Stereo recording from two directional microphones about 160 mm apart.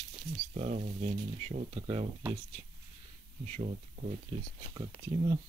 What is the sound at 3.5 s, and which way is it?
Speech, 45° right (ahead or behind).